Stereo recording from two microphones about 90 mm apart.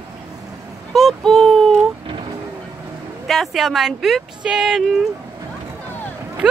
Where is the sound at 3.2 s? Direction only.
Centre (ahead or behind).